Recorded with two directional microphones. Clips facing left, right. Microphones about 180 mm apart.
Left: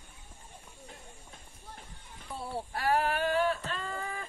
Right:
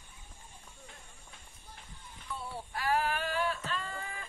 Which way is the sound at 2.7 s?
50° left (ahead or behind).